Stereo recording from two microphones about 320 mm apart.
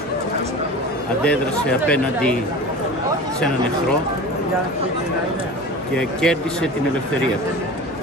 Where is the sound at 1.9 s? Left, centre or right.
Centre.